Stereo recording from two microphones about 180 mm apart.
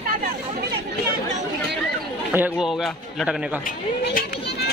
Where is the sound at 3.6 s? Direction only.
55° left (ahead or behind).